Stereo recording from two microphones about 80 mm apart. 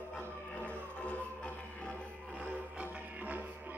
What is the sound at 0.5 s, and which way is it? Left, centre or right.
Music, centre.